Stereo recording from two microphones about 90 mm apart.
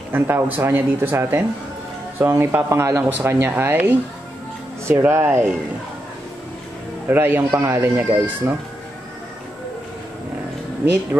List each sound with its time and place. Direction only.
0.1 s speech: 25° right (ahead or behind)
3.0 s speech: 20° right (ahead or behind)
5.0 s speech: 25° right (ahead or behind)
7.1 s speech: 25° right (ahead or behind)